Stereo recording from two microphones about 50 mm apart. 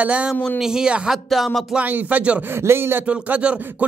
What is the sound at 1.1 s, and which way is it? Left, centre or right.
Music, centre.